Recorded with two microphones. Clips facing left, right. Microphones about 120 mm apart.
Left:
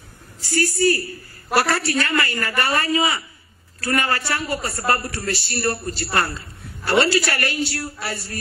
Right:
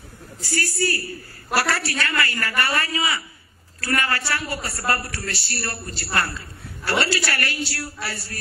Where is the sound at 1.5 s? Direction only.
25° left (ahead or behind).